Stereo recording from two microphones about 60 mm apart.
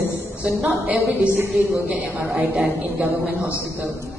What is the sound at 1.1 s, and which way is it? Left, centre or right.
Speech, right.